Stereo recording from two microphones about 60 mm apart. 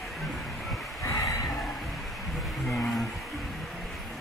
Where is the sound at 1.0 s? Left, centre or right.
Left.